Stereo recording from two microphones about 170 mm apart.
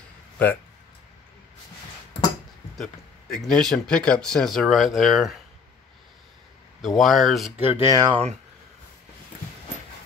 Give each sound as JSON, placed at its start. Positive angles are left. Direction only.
{"t": 0.4, "sound": "speech", "side_deg": 10}
{"t": 2.8, "sound": "speech", "side_deg": 0}
{"t": 7.0, "sound": "speech", "side_deg": 0}
{"t": 7.9, "sound": "speech", "side_deg": -25}